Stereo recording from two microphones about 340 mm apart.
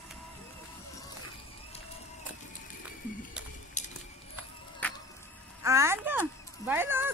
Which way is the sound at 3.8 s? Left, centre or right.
Left.